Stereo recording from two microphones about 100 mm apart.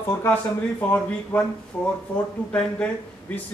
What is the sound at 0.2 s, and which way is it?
A man's voice, 15° left (ahead or behind).